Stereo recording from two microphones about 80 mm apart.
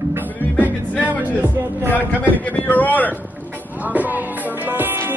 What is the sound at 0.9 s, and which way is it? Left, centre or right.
Music, right.